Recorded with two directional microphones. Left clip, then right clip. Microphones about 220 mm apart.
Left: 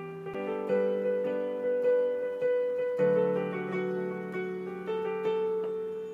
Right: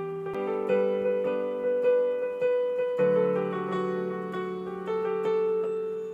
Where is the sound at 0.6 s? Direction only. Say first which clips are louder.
Right 2 dB; 20° right (ahead or behind).